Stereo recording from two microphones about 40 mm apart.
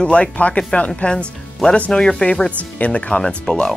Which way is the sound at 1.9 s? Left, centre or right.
Centre.